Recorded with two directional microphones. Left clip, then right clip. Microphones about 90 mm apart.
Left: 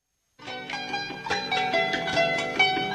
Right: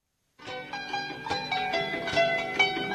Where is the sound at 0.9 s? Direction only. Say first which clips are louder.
Left 2 dB; 40° left (ahead or behind).